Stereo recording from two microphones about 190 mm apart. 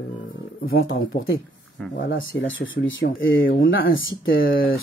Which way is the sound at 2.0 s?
80° left.